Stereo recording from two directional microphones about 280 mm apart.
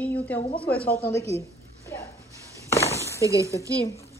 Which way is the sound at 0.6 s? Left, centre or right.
Left.